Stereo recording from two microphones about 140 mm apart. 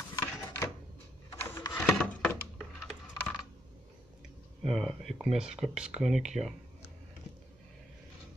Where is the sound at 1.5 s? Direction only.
15° left (ahead or behind).